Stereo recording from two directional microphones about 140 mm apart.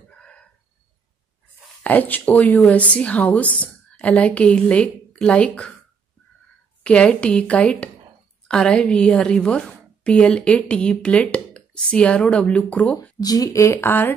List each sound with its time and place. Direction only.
0.1 s a sound: 5° left (ahead or behind)
1.8 s a woman's voice: 10° left (ahead or behind)
6.8 s a woman's voice: 10° left (ahead or behind)
13.2 s speech: 25° left (ahead or behind)